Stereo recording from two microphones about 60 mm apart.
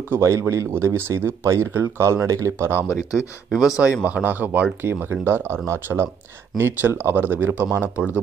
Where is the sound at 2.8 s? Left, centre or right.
Left.